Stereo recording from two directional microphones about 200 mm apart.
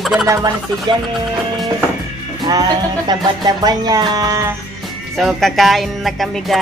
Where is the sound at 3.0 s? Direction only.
20° right (ahead or behind).